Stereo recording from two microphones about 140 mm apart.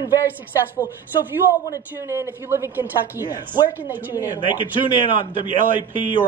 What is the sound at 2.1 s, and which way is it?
A woman's voice, 15° right (ahead or behind).